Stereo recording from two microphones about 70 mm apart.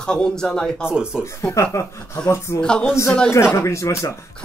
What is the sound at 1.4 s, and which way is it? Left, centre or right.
Speech, left.